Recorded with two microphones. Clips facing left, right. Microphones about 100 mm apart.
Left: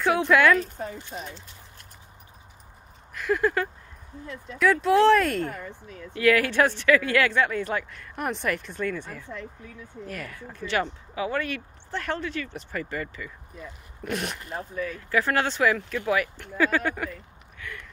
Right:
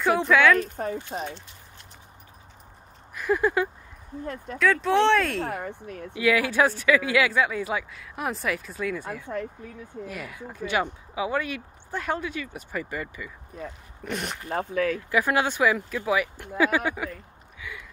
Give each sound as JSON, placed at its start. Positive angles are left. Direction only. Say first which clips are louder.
{"t": 0.0, "sound": "speech", "louder": "even", "side_deg": 0}
{"t": 0.7, "sound": "speech", "louder": "right 5 dB", "side_deg": -50}
{"t": 3.2, "sound": "speech", "louder": "right 1 dB", "side_deg": -10}
{"t": 4.6, "sound": "speech", "louder": "left 2 dB", "side_deg": 5}
{"t": 5.4, "sound": "speech", "louder": "right 2 dB", "side_deg": -80}
{"t": 6.1, "sound": "speech", "louder": "left 1 dB", "side_deg": -10}
{"t": 14.0, "sound": "speech", "louder": "left 1 dB", "side_deg": 0}
{"t": 14.5, "sound": "speech", "louder": "right 10 dB", "side_deg": -90}
{"t": 15.0, "sound": "speech", "louder": "right 1 dB", "side_deg": -15}
{"t": 17.6, "sound": "a sound", "louder": "even", "side_deg": -5}